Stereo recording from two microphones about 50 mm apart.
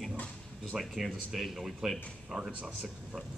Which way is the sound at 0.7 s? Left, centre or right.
Centre.